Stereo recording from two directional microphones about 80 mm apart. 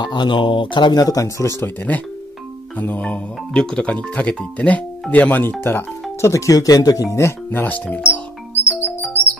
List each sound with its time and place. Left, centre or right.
0.0 s speech: left
1.0 s speech: left
1.6 s speech: left
6.2 s speech: left
8.0 s music: centre